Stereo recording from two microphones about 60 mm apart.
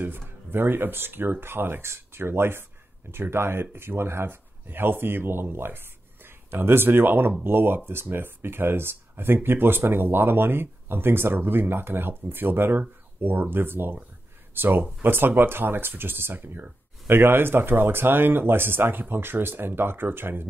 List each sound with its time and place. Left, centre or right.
0.0 s speech: right